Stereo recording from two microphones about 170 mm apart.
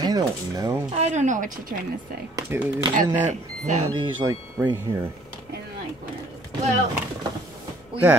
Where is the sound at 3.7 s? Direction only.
45° right (ahead or behind).